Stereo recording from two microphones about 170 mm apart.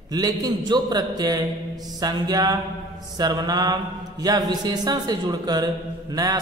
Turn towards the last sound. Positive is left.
turn(degrees=-20)  # may be behind; listen again after turning